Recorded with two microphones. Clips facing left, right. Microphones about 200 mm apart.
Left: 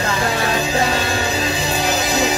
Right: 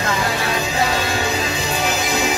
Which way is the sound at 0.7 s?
35° left (ahead or behind).